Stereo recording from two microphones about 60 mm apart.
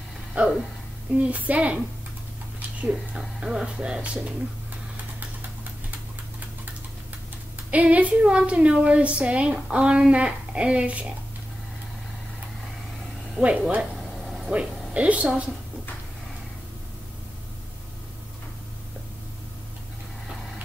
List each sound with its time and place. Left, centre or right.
0.3 s a woman's voice: right
2.9 s speech: centre
7.7 s a woman's voice: right
13.4 s a woman's voice: right
13.7 s a sound: centre
14.5 s speech: centre